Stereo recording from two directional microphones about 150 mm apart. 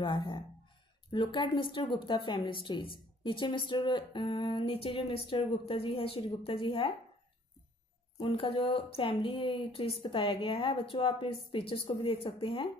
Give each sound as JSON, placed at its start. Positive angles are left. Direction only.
{"t": 0.0, "sound": "a woman's voice", "side_deg": 35}
{"t": 8.2, "sound": "a woman's voice", "side_deg": 35}